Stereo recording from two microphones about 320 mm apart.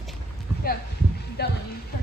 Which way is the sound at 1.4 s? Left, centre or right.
Left.